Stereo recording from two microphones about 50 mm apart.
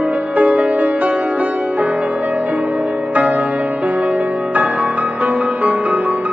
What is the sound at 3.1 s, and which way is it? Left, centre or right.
Music, right.